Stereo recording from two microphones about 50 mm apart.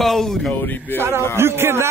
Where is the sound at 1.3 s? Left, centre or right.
Right.